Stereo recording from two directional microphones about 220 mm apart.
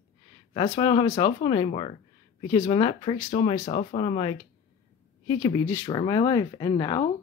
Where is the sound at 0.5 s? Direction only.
25° left (ahead or behind).